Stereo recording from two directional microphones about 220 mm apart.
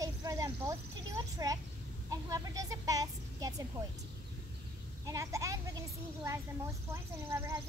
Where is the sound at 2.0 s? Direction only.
15° right (ahead or behind).